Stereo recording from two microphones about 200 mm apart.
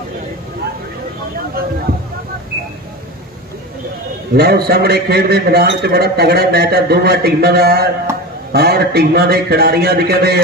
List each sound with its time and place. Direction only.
4.3 s a man's voice: 50° right (ahead or behind)